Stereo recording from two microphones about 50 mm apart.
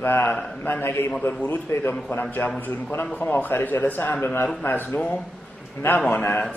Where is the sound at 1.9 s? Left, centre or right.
Left.